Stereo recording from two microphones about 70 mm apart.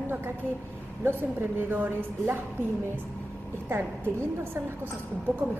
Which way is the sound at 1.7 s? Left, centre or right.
Right.